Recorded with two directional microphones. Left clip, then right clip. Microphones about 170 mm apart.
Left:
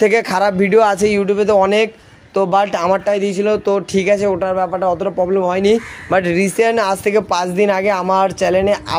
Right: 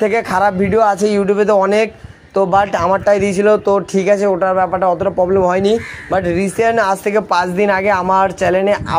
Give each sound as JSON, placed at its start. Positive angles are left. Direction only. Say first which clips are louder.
{"t": 0.0, "sound": "speech", "louder": "even", "side_deg": 25}
{"t": 1.0, "sound": "speech", "louder": "right 1 dB", "side_deg": -5}
{"t": 2.3, "sound": "speech", "louder": "right 2 dB", "side_deg": 10}
{"t": 3.1, "sound": "speech", "louder": "right 3 dB", "side_deg": -35}
{"t": 3.6, "sound": "speech", "louder": "right 2 dB", "side_deg": 0}
{"t": 6.0, "sound": "speech", "louder": "left 2 dB", "side_deg": 30}